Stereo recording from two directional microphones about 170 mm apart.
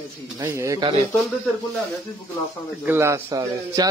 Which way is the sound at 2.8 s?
15° right (ahead or behind).